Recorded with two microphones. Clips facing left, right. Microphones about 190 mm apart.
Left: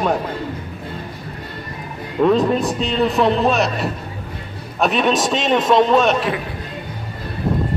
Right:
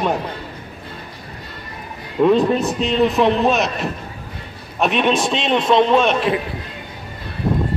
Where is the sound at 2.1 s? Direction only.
Centre (ahead or behind).